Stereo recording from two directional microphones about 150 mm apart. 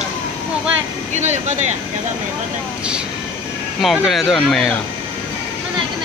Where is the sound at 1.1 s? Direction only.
50° right (ahead or behind).